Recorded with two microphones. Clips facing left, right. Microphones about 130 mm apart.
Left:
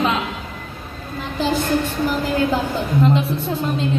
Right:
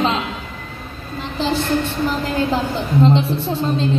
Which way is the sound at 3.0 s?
25° right (ahead or behind).